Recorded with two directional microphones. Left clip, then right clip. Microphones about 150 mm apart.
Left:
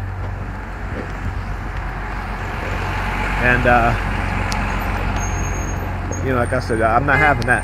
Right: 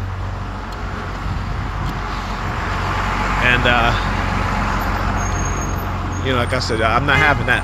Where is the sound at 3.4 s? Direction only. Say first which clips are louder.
Left 1 dB; 55° left (ahead or behind).